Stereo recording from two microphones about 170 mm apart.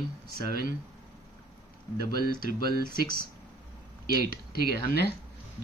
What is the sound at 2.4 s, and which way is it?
Speech, 65° right (ahead or behind).